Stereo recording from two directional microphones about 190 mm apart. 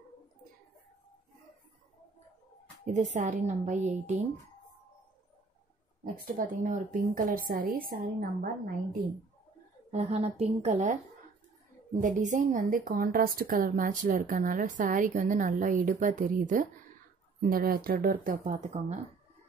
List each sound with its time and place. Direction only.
2.8 s speech: 40° right (ahead or behind)
6.2 s a woman's voice: 45° right (ahead or behind)
9.8 s speech: 35° right (ahead or behind)
12.0 s a woman's voice: 40° right (ahead or behind)